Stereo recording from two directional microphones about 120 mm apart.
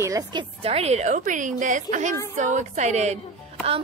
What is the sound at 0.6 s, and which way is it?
A woman's voice, 60° right (ahead or behind).